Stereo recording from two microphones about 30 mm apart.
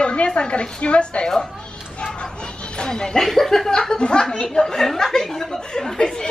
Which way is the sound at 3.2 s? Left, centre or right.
Centre.